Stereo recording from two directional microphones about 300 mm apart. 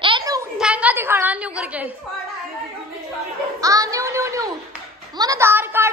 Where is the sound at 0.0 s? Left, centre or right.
Centre.